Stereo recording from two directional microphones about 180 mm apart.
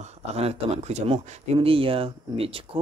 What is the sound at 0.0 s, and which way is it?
Speech, 35° right (ahead or behind).